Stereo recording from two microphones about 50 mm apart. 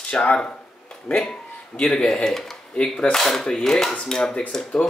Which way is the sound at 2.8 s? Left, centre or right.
Left.